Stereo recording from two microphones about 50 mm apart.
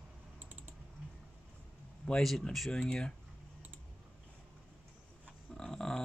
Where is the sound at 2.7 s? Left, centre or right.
Centre.